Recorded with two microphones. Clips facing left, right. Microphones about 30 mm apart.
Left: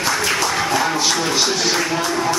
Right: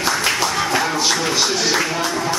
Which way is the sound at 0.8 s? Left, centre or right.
Centre.